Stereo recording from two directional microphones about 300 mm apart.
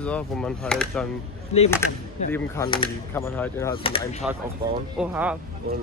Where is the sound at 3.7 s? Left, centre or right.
Centre.